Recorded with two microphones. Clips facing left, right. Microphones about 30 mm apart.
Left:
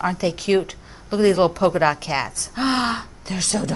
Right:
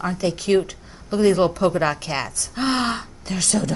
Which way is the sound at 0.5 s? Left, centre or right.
Centre.